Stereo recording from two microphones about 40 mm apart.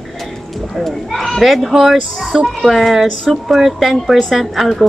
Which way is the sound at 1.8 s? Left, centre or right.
Centre.